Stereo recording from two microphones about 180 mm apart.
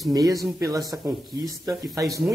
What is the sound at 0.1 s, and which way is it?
Speech, 20° right (ahead or behind).